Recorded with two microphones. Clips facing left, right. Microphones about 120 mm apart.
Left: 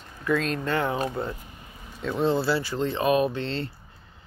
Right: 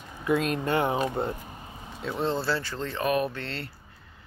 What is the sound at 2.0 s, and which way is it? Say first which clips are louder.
Speech: left 4 dB; 5° right (ahead or behind).